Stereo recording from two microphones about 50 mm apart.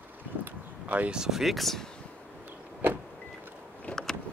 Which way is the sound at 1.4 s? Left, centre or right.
Centre.